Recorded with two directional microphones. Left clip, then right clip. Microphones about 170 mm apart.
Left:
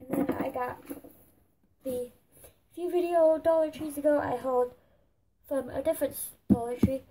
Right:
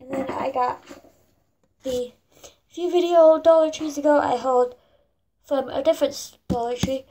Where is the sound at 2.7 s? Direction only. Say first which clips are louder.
Right 9 dB; 5° left (ahead or behind).